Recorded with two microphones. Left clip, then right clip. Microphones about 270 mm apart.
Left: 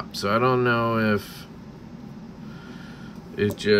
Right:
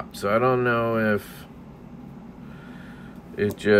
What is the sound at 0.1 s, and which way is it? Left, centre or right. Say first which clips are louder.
Speech: even; centre.